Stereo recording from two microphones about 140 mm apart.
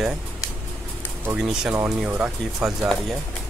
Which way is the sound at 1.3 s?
5° right (ahead or behind).